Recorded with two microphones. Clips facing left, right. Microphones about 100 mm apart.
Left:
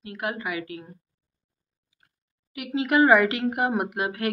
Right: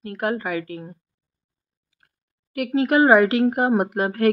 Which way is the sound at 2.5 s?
45° right (ahead or behind).